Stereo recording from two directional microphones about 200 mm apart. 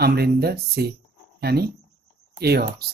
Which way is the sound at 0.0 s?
50° right (ahead or behind).